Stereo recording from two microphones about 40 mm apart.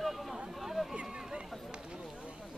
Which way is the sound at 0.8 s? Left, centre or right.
Centre.